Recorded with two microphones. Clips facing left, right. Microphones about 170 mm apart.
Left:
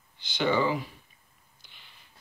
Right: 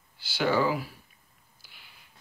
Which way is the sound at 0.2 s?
5° right (ahead or behind).